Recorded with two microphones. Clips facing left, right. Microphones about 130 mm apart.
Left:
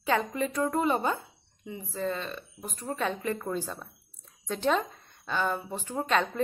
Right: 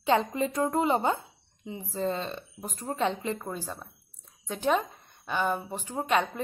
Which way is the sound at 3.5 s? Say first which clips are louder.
Left 3 dB; 10° right (ahead or behind).